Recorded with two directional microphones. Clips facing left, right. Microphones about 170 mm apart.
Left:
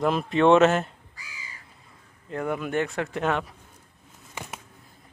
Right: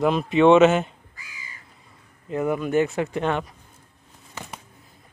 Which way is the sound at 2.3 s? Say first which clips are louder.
Right 5 dB; 5° right (ahead or behind).